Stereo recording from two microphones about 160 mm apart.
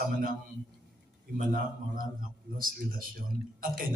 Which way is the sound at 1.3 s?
60° right (ahead or behind).